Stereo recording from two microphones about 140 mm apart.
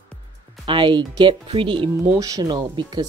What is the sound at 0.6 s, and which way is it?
Speech, 35° right (ahead or behind).